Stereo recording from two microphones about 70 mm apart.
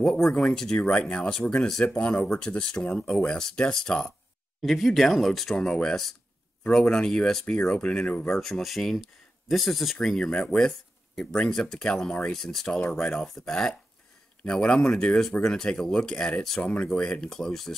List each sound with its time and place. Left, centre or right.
0.0 s speech: centre
4.6 s speech: centre
8.4 s speech: centre